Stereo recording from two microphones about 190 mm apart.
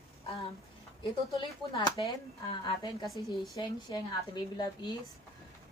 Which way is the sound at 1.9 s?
20° left (ahead or behind).